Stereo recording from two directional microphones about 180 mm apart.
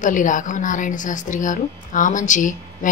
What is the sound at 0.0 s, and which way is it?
A woman's voice, 45° left (ahead or behind).